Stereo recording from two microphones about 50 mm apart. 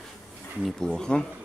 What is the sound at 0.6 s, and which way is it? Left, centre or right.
Speech, centre.